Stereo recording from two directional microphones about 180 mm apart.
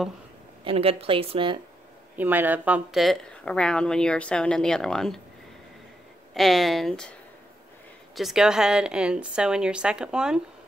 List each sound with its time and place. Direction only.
0.7 s a woman's voice: 35° right (ahead or behind)
2.1 s speech: 10° right (ahead or behind)
6.3 s speech: centre (ahead or behind)